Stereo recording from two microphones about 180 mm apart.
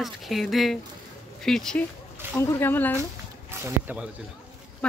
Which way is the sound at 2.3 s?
15° left (ahead or behind).